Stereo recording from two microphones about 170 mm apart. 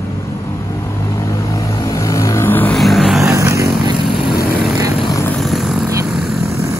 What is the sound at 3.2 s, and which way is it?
Vehicle, 20° right (ahead or behind).